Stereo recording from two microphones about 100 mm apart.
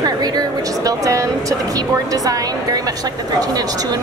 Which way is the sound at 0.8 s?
30° right (ahead or behind).